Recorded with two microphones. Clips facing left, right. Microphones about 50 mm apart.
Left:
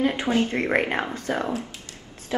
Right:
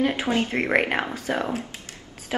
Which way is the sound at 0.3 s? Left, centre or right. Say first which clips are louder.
Even; right.